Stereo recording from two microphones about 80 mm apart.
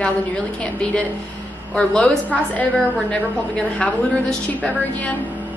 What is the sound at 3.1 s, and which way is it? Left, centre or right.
A woman's voice, centre.